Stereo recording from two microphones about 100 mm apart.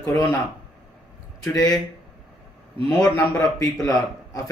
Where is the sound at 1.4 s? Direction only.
35° left (ahead or behind).